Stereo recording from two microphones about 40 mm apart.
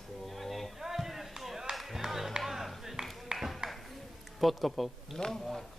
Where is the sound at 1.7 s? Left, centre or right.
Centre.